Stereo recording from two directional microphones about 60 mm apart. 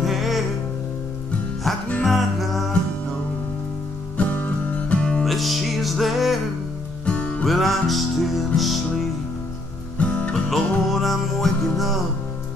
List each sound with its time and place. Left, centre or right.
0.0 s music: centre
2.0 s music: centre
4.4 s music: left
5.2 s music: centre
7.1 s music: left
7.4 s music: centre
9.9 s music: left
10.5 s music: centre